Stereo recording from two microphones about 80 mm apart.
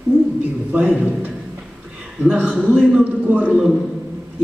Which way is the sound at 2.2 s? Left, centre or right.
Centre.